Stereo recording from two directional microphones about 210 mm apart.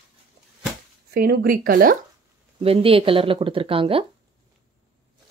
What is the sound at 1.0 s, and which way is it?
Speech, 50° right (ahead or behind).